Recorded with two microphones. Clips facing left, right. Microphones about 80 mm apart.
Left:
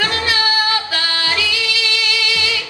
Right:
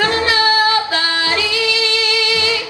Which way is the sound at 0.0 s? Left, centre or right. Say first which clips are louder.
Right 4 dB; right.